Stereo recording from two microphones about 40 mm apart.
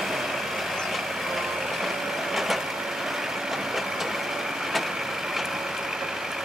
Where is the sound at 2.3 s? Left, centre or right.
Centre.